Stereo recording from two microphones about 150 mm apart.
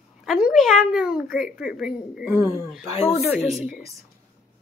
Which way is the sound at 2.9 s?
45° left (ahead or behind).